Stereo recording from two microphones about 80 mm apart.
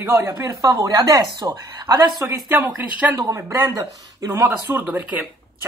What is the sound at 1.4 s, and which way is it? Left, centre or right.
Speech, right.